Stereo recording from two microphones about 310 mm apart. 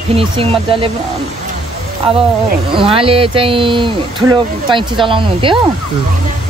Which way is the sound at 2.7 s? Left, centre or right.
Centre.